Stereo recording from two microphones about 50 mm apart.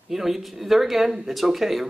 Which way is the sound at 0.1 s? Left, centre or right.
Centre.